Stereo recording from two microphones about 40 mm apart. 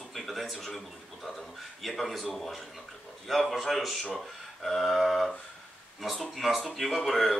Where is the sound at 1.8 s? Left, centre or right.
Centre.